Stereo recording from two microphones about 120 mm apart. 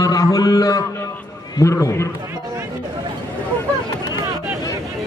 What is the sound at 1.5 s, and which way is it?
Speech, 25° left (ahead or behind).